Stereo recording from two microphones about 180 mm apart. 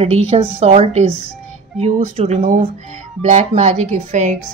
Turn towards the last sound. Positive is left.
turn(degrees=-45)  # may be behind; listen again after turning